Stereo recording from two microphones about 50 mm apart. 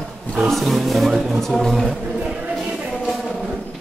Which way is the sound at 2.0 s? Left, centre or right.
Right.